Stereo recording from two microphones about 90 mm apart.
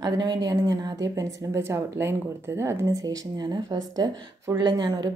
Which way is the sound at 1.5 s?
30° right (ahead or behind).